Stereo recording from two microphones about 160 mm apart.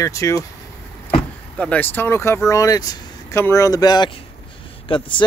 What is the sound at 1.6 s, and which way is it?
Speech, 10° left (ahead or behind).